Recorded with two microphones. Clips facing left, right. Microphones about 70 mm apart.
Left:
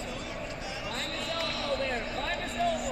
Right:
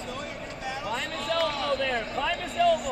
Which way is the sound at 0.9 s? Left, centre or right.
Right.